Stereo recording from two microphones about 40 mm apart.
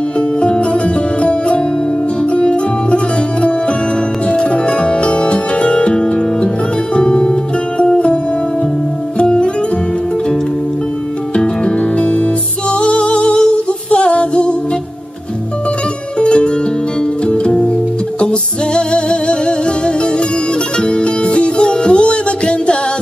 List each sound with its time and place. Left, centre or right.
0.2 s music: left
9.2 s music: left
11.3 s music: left
16.2 s music: left